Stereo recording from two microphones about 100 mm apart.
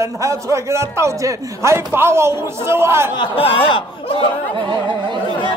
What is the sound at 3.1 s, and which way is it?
Speech, 60° left (ahead or behind).